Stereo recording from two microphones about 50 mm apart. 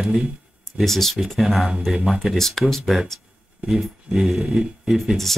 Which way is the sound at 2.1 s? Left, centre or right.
Centre.